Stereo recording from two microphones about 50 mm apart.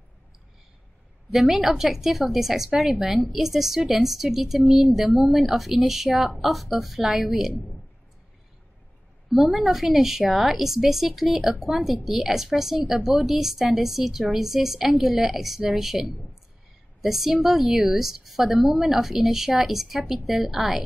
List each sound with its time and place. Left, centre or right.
1.3 s speech: centre
9.3 s speech: centre